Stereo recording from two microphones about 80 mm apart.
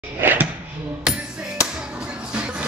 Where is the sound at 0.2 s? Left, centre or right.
Right.